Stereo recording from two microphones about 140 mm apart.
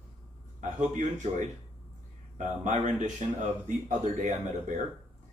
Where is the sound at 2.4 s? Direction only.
60° right (ahead or behind).